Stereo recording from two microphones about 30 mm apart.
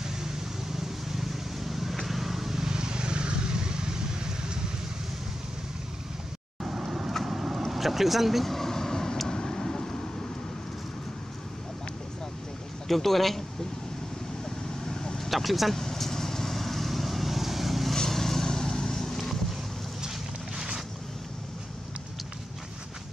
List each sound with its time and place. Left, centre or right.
0.0 s vehicle: centre
2.7 s vehicle: right
6.6 s vehicle: centre
7.7 s speech: centre
8.5 s vehicle: centre
12.8 s speech: centre
14.4 s vehicle: centre
15.1 s speech: centre
15.7 s vehicle: centre
18.1 s vehicle: centre
20.5 s boat: right